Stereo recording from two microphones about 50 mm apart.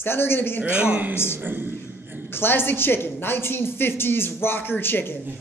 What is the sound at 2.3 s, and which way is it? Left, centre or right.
A woman's voice, left.